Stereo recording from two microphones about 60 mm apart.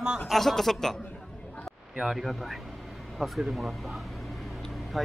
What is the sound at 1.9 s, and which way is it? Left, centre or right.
Speech, centre.